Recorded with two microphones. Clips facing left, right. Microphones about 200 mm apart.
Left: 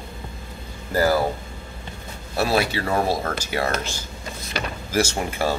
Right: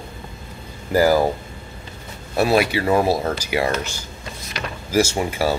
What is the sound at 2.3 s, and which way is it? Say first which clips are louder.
Speech: right 4 dB; 15° right (ahead or behind).